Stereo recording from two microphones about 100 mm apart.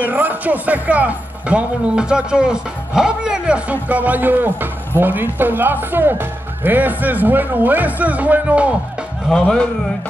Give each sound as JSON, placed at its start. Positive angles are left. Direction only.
{"t": 0.0, "sound": "speech", "side_deg": -15}